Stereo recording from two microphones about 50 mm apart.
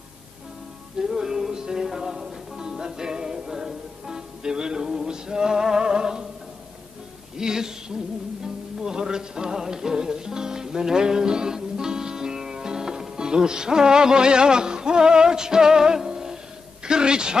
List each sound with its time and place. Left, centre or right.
0.9 s music: centre
7.3 s a sound: centre
8.8 s music: centre
16.8 s a man's voice: centre